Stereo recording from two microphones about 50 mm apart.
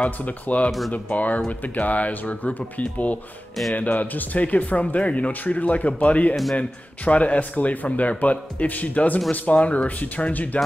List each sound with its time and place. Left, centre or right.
0.0 s a man's voice: left
0.7 s speech: centre
0.9 s a man's voice: left